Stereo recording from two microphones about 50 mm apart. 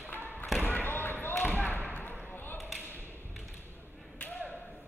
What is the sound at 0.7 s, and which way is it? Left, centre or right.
Basketball bounce, left.